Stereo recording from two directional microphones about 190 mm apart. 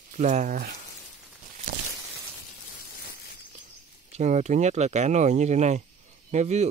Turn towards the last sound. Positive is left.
turn(degrees=-35)  # may be behind; listen again after turning